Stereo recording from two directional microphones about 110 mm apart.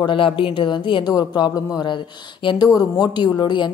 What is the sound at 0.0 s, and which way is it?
A woman's voice, 50° left (ahead or behind).